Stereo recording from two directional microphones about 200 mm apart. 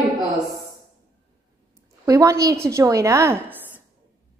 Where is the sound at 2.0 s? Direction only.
15° right (ahead or behind).